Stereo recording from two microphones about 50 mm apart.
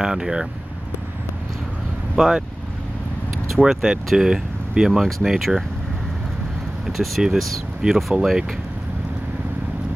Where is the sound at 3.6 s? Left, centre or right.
Centre.